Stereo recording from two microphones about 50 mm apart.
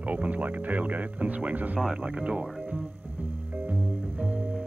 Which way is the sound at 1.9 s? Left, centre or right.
Centre.